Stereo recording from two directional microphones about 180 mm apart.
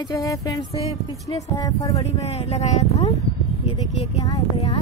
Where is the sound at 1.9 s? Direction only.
35° left (ahead or behind).